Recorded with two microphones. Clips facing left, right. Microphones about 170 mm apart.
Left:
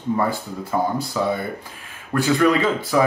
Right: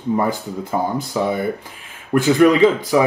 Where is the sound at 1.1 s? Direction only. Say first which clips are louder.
Right 6 dB; 20° right (ahead or behind).